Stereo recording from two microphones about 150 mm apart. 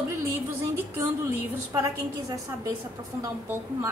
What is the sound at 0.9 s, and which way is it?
A woman's voice, 15° right (ahead or behind).